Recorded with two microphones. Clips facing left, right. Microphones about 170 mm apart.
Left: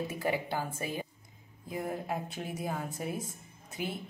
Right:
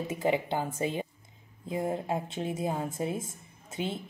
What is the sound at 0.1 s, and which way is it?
A woman's voice, 20° right (ahead or behind).